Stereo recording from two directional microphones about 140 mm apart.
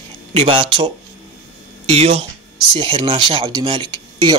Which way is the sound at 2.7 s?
40° right (ahead or behind).